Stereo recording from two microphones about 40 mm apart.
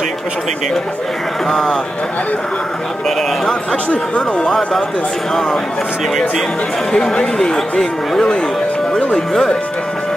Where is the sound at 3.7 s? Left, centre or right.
Left.